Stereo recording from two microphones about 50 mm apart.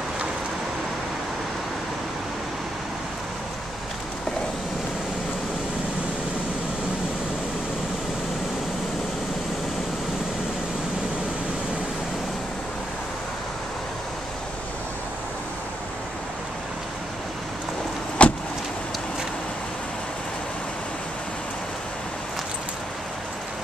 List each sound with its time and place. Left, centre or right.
18.2 s vehicle: left